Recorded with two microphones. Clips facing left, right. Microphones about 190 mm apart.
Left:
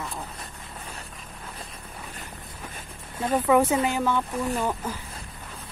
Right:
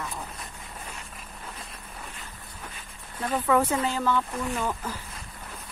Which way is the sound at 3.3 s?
10° left (ahead or behind).